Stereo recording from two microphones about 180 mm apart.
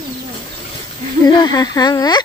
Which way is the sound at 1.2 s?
25° left (ahead or behind).